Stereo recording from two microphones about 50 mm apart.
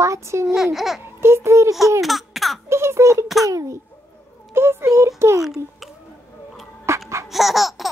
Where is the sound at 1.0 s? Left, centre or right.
Right.